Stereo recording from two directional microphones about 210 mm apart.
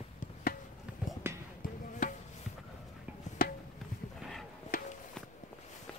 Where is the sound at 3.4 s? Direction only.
45° left (ahead or behind).